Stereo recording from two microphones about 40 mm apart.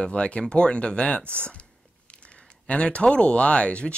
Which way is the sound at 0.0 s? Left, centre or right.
Left.